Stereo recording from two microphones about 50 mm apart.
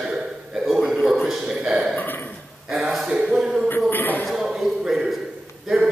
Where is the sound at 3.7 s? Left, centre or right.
Left.